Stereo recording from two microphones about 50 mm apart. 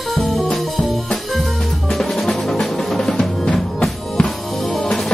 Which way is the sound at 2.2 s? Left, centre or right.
Centre.